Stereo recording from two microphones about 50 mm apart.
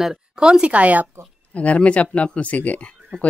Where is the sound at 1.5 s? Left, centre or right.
Left.